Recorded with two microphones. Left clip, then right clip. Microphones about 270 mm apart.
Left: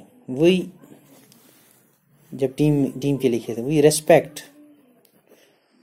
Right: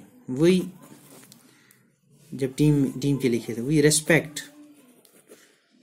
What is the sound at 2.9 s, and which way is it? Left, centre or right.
Speech, centre.